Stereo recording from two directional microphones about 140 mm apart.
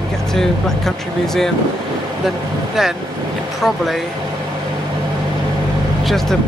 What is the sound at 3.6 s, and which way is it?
Speech, centre (ahead or behind).